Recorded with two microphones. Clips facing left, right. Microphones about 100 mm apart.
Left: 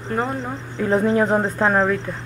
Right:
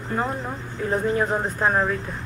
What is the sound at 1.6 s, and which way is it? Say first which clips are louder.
Speech: left 2 dB; 85° left.